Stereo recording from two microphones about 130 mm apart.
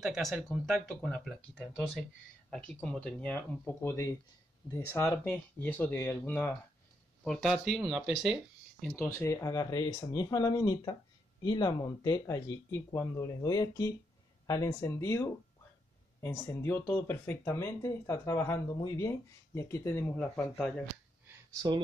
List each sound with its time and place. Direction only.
0.0 s speech: centre (ahead or behind); by 6.5 s 15° left (ahead or behind)
7.2 s speech: centre (ahead or behind)
8.9 s speech: 20° left (ahead or behind)